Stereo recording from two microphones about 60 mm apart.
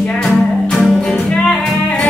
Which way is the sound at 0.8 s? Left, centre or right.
Centre.